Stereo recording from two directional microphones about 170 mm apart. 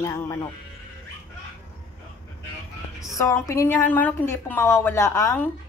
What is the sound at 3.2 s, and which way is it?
A woman's voice, 20° left (ahead or behind).